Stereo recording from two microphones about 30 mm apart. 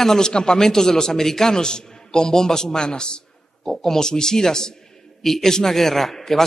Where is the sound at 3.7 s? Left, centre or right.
Centre.